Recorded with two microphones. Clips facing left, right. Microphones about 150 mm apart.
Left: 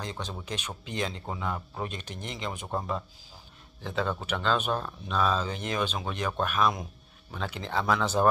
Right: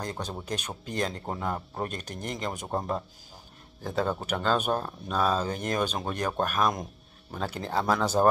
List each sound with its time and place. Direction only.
0.0 s speech: 45° right (ahead or behind)